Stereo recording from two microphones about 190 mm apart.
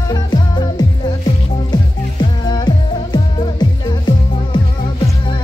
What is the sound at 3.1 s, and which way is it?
Music, 20° left (ahead or behind).